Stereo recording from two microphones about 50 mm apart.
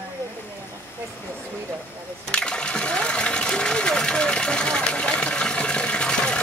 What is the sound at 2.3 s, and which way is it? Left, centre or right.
Water, centre.